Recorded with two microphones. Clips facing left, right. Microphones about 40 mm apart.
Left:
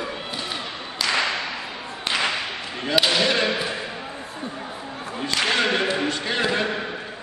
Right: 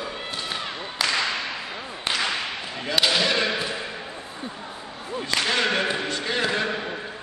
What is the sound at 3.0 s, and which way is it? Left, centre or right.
Basketball bounce, centre.